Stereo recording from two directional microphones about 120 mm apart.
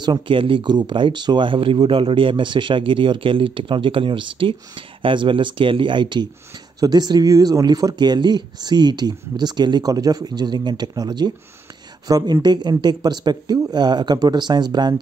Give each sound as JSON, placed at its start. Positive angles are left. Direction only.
{"t": 0.0, "sound": "speech", "side_deg": -40}